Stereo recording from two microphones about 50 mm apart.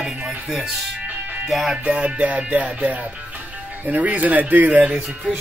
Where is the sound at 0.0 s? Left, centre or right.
Centre.